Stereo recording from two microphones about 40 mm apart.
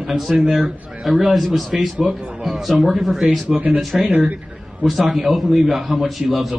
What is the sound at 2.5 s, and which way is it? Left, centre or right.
A man's voice, centre.